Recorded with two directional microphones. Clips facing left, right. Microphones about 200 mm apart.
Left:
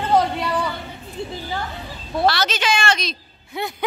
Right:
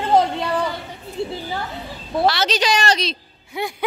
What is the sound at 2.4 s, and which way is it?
Speech, 35° right (ahead or behind).